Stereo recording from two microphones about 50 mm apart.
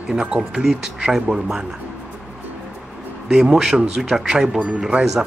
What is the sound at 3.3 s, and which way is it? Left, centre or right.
Speech, centre.